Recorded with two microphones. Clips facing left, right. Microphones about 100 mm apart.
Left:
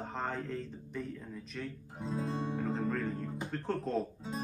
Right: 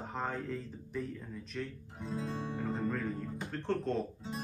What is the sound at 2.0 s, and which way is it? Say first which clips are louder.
Music: left 2 dB; 20° left (ahead or behind).